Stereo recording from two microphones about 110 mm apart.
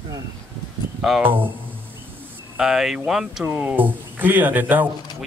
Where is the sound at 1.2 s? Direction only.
20° right (ahead or behind).